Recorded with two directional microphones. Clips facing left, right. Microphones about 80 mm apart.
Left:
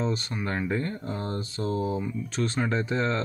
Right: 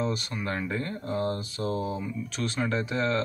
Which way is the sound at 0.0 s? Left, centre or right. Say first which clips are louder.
Left 1 dB; left.